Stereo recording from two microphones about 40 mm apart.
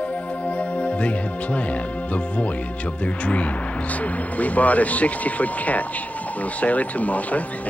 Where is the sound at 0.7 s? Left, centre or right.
Left.